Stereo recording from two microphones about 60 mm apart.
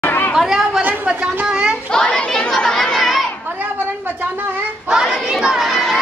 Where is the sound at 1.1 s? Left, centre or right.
Centre.